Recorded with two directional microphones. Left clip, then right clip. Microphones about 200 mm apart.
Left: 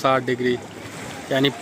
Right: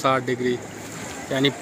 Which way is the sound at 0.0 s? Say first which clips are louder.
Left 2 dB; 10° left (ahead or behind).